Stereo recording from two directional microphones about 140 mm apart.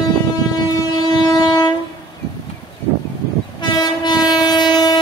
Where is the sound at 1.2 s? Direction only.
25° left (ahead or behind).